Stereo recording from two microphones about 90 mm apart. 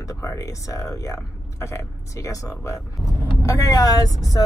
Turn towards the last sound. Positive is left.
turn(degrees=45)  # may be behind; listen again after turning